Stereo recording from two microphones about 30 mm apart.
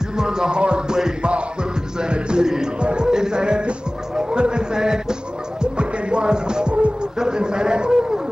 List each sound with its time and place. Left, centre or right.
0.2 s music: right
0.6 s a sound: right
1.2 s music: right
2.8 s a man's voice: right
3.1 s speech: right
4.1 s music: right
4.4 s a sound: right
5.6 s music: right
7.0 s a sound: right